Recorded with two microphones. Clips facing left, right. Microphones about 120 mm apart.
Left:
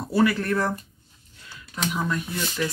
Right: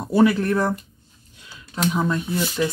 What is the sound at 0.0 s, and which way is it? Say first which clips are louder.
Speech: right 4 dB; 20° right (ahead or behind).